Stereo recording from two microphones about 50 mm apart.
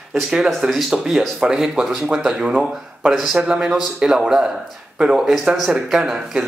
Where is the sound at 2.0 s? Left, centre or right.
Centre.